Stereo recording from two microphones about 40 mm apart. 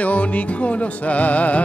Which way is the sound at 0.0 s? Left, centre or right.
Left.